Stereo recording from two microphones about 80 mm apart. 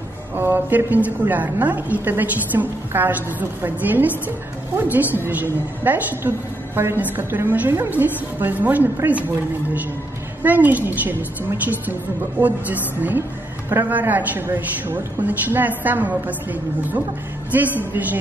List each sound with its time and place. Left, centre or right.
0.4 s a woman's voice: right
10.4 s a woman's voice: right
12.4 s a woman's voice: right
17.5 s a woman's voice: right